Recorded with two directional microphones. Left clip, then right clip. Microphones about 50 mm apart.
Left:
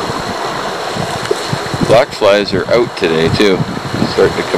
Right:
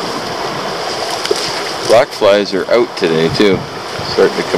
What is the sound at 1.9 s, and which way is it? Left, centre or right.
Speech, centre.